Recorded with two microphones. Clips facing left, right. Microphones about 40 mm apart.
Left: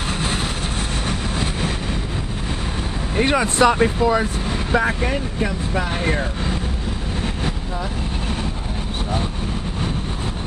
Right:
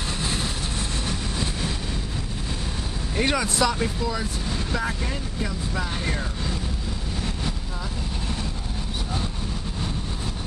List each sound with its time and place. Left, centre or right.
0.2 s vehicle: left
3.2 s speech: left
3.5 s speech: left